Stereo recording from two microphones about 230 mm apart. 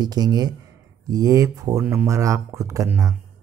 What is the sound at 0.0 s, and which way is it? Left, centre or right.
Speech, centre.